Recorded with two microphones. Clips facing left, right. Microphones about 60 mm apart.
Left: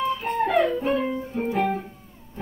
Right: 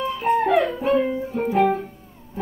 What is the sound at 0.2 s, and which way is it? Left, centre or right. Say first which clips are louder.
Music: right 6 dB; centre.